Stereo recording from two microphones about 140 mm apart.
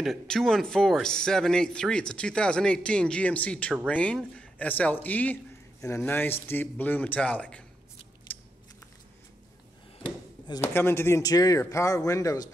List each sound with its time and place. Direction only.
0.0 s speech: centre (ahead or behind)
8.3 s biting: 10° left (ahead or behind)
10.6 s speech: 15° left (ahead or behind)